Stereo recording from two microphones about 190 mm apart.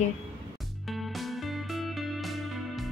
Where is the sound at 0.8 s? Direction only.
Centre (ahead or behind).